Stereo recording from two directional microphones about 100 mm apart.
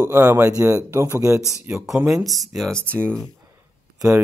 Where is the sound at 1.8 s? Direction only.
5° right (ahead or behind).